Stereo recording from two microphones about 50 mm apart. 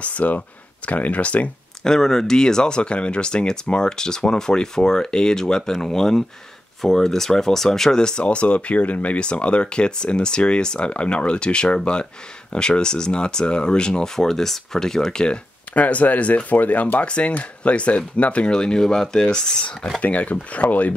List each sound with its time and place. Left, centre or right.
0.0 s speech: left
1.8 s speech: centre
15.7 s speech: left
20.0 s speech: left